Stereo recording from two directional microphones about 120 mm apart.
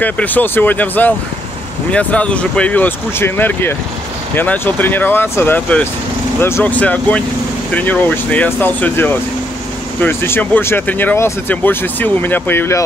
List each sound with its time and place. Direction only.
0.0 s speech: 15° left (ahead or behind)